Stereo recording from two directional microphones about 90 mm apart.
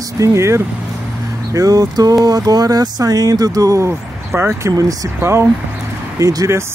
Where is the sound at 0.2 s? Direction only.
35° right (ahead or behind).